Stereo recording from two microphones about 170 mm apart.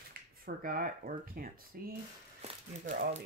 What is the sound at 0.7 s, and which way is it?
Speech, 55° right (ahead or behind).